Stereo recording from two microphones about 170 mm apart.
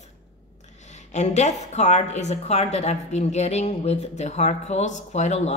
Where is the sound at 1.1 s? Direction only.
40° left (ahead or behind).